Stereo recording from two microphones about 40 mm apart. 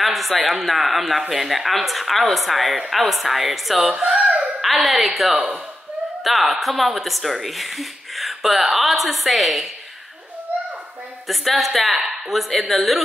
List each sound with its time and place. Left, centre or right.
0.0 s a woman's voice: centre
4.2 s hands: right
4.6 s a woman's voice: centre
11.2 s a woman's voice: centre